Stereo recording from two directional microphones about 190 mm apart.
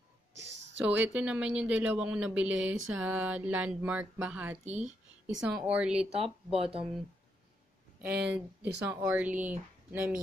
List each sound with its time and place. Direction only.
0.7 s speech: 10° right (ahead or behind)
4.6 s speech: 35° right (ahead or behind)
5.2 s speech: 5° right (ahead or behind)
6.5 s speech: 30° right (ahead or behind)
8.0 s speech: 5° right (ahead or behind)